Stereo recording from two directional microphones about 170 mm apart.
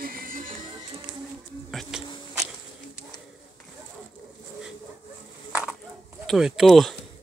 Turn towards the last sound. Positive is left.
turn(degrees=0)  # may be behind; listen again after turning